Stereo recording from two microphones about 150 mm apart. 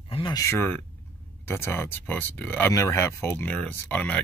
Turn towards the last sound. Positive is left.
turn(degrees=10)  # may be behind; listen again after turning